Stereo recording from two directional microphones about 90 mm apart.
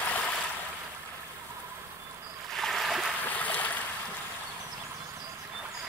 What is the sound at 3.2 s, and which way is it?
Boat, 20° left (ahead or behind).